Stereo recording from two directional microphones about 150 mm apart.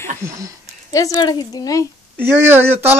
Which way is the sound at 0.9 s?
25° left (ahead or behind).